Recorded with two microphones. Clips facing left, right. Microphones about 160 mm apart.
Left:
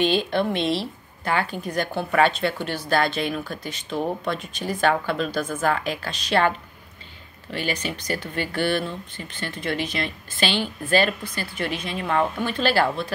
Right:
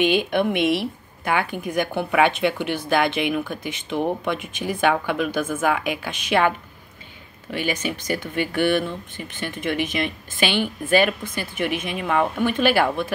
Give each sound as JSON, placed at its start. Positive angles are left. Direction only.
{"t": 0.0, "sound": "speech", "side_deg": -15}
{"t": 7.5, "sound": "speech", "side_deg": -15}